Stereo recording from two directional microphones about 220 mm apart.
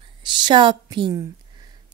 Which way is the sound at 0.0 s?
20° right (ahead or behind).